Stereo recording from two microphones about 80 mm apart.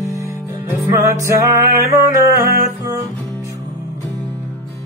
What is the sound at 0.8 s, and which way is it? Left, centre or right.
Music, right.